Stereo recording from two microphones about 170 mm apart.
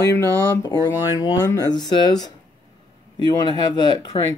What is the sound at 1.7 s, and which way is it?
Speech, 25° left (ahead or behind).